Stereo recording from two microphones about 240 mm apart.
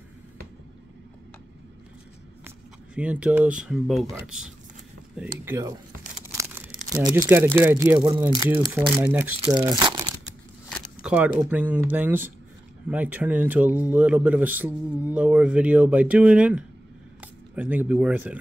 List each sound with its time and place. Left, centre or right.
2.4 s speech: centre
6.3 s a sound: centre
7.1 s speech: centre
11.0 s speech: centre